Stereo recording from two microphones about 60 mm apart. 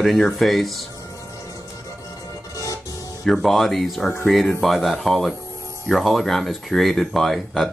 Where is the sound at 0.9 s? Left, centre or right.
Left.